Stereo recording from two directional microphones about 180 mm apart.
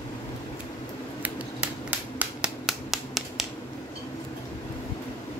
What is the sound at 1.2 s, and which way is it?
Finger snapping, 10° right (ahead or behind).